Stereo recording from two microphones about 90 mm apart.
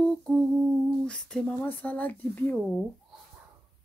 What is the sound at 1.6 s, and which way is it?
Speech, 20° left (ahead or behind).